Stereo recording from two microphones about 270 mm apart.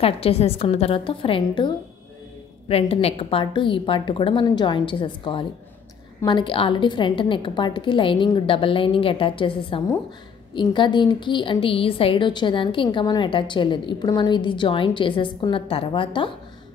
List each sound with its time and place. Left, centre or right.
0.0 s a woman's voice: left
2.7 s a woman's voice: left